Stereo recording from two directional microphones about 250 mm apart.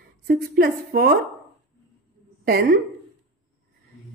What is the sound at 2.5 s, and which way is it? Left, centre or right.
Speech, right.